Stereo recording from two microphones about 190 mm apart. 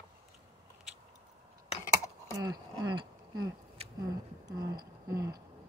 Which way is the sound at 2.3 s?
20° right (ahead or behind).